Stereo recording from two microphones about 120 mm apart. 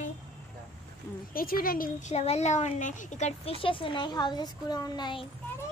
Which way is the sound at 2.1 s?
70° left (ahead or behind).